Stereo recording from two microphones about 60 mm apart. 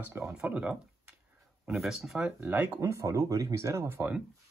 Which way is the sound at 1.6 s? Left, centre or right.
Centre.